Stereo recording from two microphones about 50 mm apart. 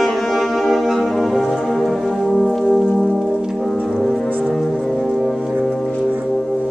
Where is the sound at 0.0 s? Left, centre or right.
Centre.